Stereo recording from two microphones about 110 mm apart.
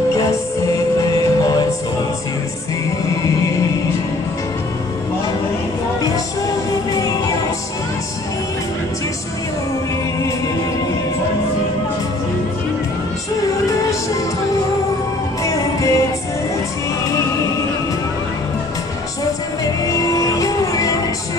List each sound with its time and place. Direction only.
0.1 s music: 30° left (ahead or behind)
6.0 s music: 30° left (ahead or behind)
15.4 s music: 30° left (ahead or behind)
19.6 s music: 30° left (ahead or behind)